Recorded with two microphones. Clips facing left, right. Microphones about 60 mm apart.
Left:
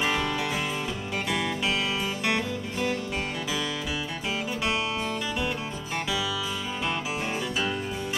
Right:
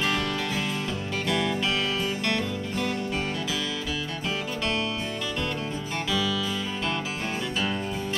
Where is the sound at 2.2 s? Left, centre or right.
Centre.